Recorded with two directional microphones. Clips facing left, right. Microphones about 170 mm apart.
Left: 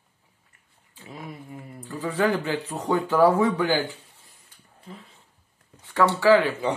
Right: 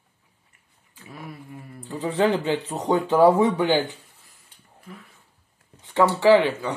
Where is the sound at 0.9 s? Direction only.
20° left (ahead or behind).